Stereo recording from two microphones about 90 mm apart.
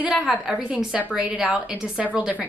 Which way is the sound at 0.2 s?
10° right (ahead or behind).